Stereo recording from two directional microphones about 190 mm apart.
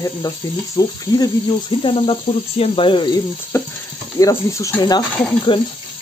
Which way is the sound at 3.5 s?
15° left (ahead or behind).